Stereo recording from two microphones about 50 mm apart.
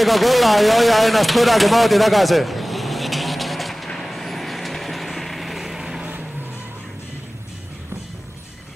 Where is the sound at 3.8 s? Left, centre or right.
Centre.